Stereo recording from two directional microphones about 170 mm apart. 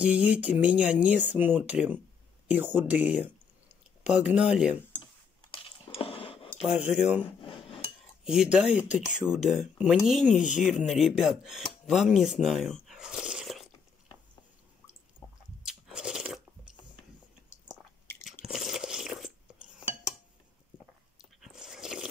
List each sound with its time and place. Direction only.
0.0 s speech: 10° right (ahead or behind)
5.5 s squish: 35° left (ahead or behind)
6.6 s speech: 5° right (ahead or behind)
12.2 s a sound: centre (ahead or behind)
15.6 s crunch: 5° right (ahead or behind)
18.4 s crunch: centre (ahead or behind)
21.2 s a sound: centre (ahead or behind)